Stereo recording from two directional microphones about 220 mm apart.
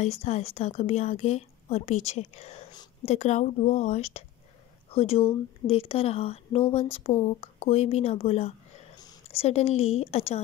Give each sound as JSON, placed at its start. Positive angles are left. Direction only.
{"t": 0.0, "sound": "a woman's voice", "side_deg": 30}